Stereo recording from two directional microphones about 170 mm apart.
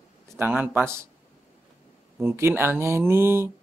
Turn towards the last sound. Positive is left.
turn(degrees=-15)  # may be behind; listen again after turning